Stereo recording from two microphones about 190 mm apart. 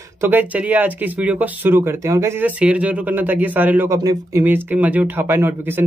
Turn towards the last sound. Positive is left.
turn(degrees=-10)  # may be behind; listen again after turning